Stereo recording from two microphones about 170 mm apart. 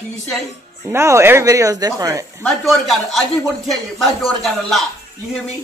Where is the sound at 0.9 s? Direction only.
15° right (ahead or behind).